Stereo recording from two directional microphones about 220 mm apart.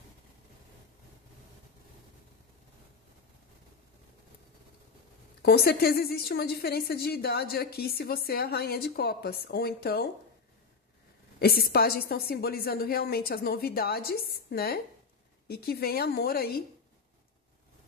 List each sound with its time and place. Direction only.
5.4 s a woman's voice: 45° left (ahead or behind)
11.3 s a woman's voice: 45° left (ahead or behind)